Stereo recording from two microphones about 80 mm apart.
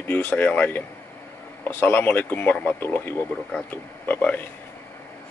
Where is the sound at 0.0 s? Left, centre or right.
Left.